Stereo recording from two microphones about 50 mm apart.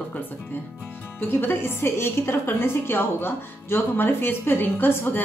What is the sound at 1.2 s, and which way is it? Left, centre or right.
A woman's voice, left.